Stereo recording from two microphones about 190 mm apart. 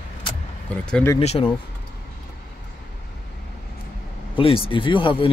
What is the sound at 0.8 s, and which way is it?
Speech, 5° left (ahead or behind).